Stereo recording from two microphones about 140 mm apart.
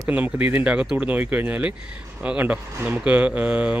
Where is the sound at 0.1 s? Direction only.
10° right (ahead or behind).